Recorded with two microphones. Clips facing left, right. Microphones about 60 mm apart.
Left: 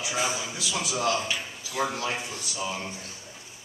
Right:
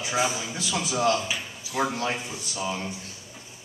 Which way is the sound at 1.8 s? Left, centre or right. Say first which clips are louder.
Right 2 dB; centre.